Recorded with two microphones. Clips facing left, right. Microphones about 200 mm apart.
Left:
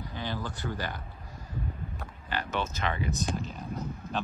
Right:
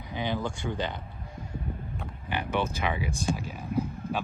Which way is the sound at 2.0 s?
15° right (ahead or behind).